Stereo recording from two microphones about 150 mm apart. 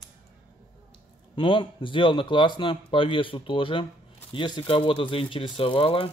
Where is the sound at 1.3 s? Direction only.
35° left (ahead or behind).